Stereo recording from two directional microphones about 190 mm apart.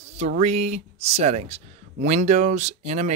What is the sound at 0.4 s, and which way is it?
Speech, 35° right (ahead or behind).